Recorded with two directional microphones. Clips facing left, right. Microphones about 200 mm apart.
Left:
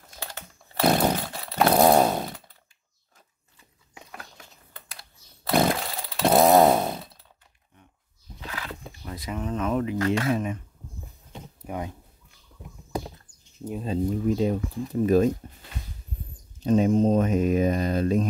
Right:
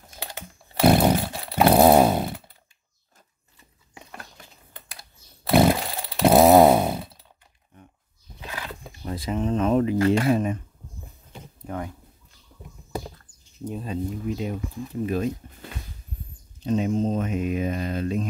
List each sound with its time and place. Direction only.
0.2 s chainsaw: 15° right (ahead or behind)
3.9 s a sound: centre (ahead or behind)
5.4 s chainsaw: 5° right (ahead or behind)
9.0 s speech: 30° right (ahead or behind)
11.6 s speech: 15° left (ahead or behind)
13.8 s speech: 35° left (ahead or behind)
16.6 s speech: 40° left (ahead or behind)